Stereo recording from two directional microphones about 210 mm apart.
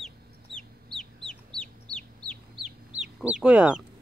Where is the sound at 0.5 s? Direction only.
5° left (ahead or behind).